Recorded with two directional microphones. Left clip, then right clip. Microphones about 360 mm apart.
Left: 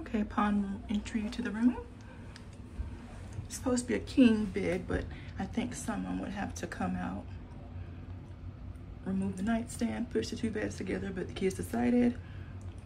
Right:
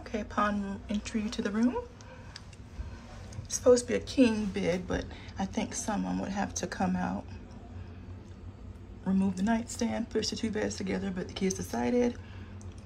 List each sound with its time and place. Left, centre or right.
0.0 s a sound: centre
0.8 s speech: centre
3.4 s speech: centre
9.0 s speech: centre